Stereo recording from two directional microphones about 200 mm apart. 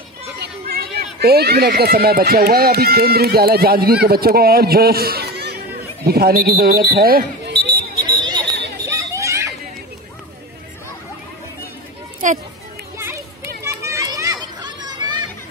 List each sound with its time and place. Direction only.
0.4 s speech: 50° right (ahead or behind)
8.2 s a sound: 20° right (ahead or behind)
8.8 s children playing: 15° right (ahead or behind)
12.2 s speech: 40° right (ahead or behind)
13.7 s children playing: 15° right (ahead or behind)